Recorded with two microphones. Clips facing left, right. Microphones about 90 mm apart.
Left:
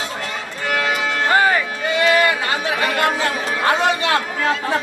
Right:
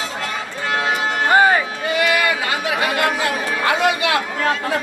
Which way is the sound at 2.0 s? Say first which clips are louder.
Left 3 dB; 30° left (ahead or behind).